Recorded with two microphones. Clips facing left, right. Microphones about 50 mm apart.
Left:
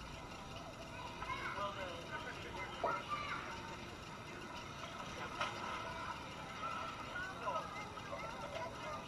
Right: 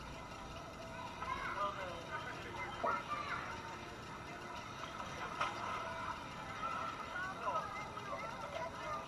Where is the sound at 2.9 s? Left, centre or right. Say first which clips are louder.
Right 2 dB; right.